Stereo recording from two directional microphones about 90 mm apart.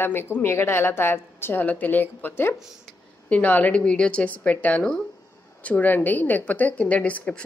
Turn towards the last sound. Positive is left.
turn(degrees=15)  # may be behind; listen again after turning